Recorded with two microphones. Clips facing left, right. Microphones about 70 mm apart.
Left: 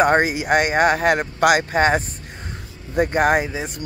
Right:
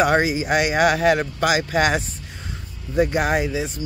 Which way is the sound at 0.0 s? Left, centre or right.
Left.